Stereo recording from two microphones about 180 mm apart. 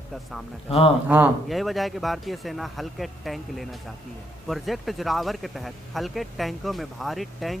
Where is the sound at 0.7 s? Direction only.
30° left (ahead or behind).